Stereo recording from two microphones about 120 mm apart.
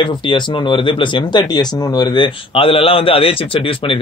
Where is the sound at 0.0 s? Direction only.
40° left (ahead or behind).